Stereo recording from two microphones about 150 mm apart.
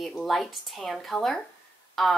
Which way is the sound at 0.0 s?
Centre (ahead or behind).